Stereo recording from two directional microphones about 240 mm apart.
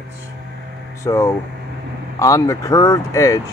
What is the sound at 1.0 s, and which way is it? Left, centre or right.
Speech, centre.